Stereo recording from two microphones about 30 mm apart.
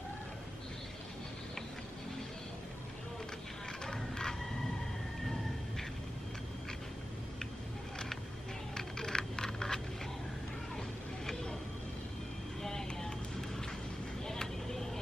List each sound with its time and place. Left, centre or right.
3.8 s mechanisms: left
8.7 s a sound: left
12.6 s vehicle: centre
14.2 s vehicle: centre